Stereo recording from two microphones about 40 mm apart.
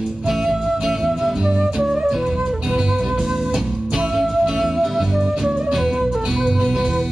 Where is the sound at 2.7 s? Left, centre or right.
Centre.